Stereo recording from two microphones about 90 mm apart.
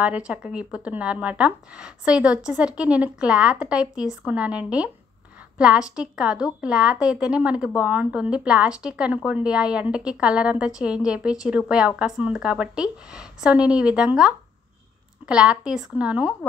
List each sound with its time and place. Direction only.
0.0 s a woman's voice: 15° right (ahead or behind)